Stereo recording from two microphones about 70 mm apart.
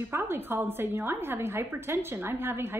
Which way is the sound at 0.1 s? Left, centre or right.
Right.